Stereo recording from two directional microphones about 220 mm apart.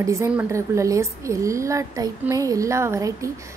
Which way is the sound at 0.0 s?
15° right (ahead or behind).